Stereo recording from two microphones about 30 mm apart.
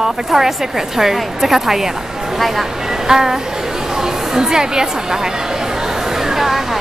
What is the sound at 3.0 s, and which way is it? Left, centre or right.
Speech, centre.